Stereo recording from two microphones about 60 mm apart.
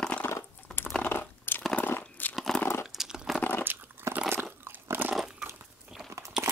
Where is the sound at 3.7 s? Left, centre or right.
Right.